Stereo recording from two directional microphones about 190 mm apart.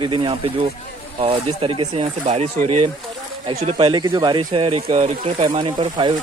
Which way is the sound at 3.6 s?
25° right (ahead or behind).